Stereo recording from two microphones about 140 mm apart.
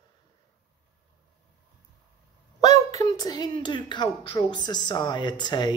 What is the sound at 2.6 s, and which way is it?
A woman's voice, 25° left (ahead or behind).